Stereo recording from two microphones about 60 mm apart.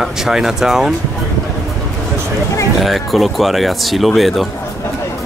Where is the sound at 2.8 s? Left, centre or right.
Centre.